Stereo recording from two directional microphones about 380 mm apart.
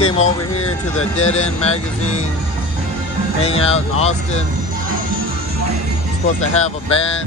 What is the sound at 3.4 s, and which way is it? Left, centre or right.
Music, centre.